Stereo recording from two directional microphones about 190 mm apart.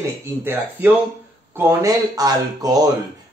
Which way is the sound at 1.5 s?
15° right (ahead or behind).